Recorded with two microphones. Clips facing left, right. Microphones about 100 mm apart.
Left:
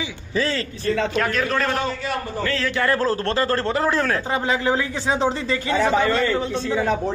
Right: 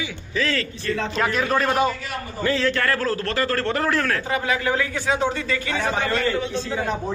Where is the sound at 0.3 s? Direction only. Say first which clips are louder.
Left 1 dB; 30° left (ahead or behind).